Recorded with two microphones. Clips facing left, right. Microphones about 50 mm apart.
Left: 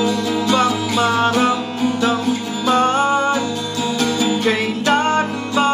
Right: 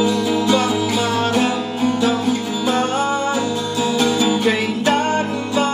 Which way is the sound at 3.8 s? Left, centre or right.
Centre.